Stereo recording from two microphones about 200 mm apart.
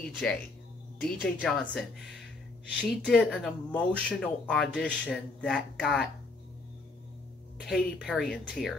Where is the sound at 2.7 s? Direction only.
Centre (ahead or behind).